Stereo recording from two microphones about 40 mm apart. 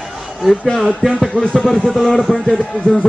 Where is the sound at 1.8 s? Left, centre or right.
Centre.